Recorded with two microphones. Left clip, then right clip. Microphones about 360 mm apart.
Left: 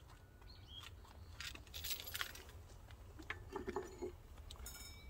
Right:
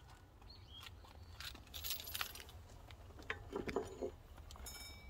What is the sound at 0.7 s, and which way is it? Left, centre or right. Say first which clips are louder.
Keys jangling: even; right.